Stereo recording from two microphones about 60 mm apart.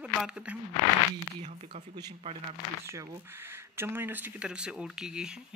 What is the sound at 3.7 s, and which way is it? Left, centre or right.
Speech, right.